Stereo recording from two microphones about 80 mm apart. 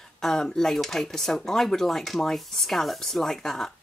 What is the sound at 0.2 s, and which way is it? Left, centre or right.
Speech, centre.